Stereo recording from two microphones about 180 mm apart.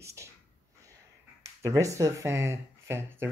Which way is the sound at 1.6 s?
15° right (ahead or behind).